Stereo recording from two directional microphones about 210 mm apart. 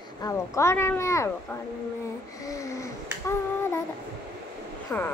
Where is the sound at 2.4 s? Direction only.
15° left (ahead or behind).